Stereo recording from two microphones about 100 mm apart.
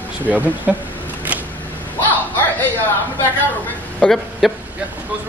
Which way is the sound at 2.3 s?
15° left (ahead or behind).